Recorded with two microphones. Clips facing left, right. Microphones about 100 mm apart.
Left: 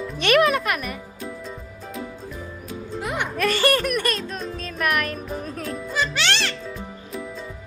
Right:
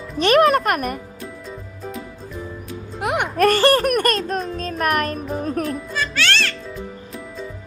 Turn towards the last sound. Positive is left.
turn(degrees=0)  # may be behind; listen again after turning